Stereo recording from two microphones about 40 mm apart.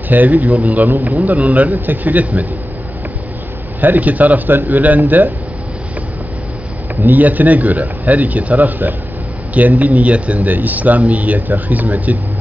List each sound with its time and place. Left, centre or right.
0.1 s speech: right
3.8 s speech: right
4.5 s speech: right
5.0 s speech: right
7.0 s speech: right